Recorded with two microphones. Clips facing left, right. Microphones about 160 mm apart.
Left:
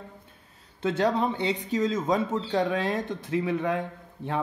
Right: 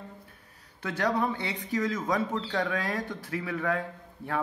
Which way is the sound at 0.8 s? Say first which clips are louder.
Left 4 dB; 25° left (ahead or behind).